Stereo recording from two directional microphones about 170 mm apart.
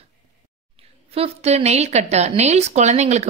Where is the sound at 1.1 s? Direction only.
40° right (ahead or behind).